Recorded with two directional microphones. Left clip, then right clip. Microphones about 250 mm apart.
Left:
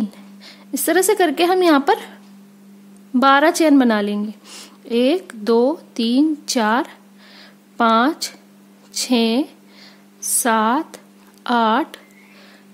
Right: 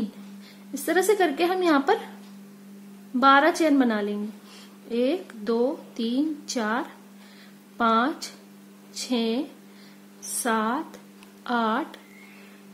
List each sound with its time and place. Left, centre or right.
0.4 s speech: left
3.2 s speech: left